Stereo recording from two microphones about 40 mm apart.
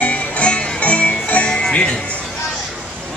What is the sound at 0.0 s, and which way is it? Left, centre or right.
Music, left.